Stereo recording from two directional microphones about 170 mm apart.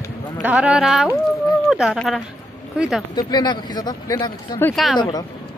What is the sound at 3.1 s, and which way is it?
Speech, 25° left (ahead or behind).